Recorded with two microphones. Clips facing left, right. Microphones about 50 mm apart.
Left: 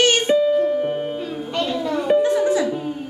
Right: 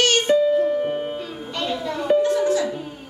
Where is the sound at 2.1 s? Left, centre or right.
Centre.